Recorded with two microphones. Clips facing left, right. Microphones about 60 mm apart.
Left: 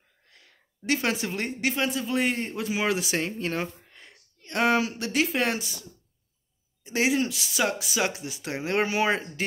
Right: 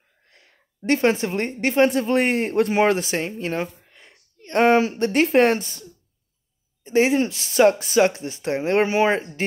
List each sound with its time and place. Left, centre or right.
0.3 s a woman's voice: right
1.9 s a man's voice: right
3.2 s speech: centre
3.6 s a sound: centre
4.4 s speech: right